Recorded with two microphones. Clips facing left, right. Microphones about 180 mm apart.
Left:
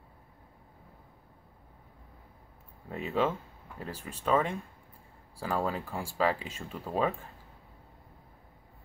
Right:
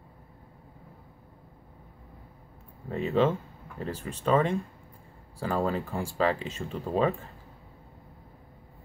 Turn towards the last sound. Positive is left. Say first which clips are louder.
# right 4 dB
turn(degrees=5)  # may be behind; listen again after turning